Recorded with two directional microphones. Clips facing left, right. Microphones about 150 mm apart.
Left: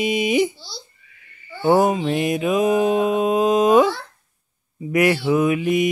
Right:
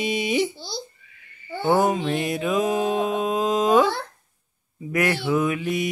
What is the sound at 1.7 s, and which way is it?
Mantra, 15° left (ahead or behind).